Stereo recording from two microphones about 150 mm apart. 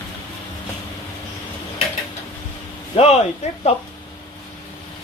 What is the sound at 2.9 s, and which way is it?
Speech, 45° left (ahead or behind).